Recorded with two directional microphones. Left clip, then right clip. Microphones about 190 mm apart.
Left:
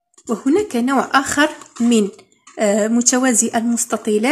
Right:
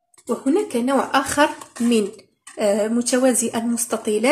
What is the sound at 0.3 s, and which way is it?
A woman's voice, 40° left (ahead or behind).